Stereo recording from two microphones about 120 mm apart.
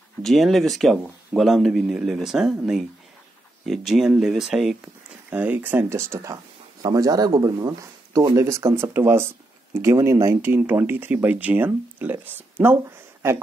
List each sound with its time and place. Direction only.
0.2 s speech: centre (ahead or behind)
4.8 s speech: 15° right (ahead or behind)